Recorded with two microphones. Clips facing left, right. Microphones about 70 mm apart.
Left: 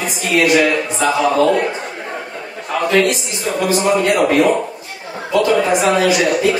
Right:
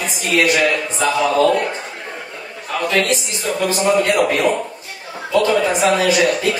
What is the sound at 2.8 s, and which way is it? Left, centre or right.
Speech, left.